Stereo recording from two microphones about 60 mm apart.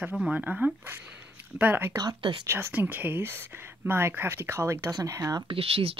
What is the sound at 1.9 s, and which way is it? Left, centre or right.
Speech, right.